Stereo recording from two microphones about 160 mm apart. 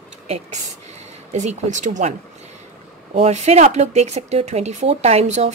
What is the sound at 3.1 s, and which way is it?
Speech, 45° right (ahead or behind).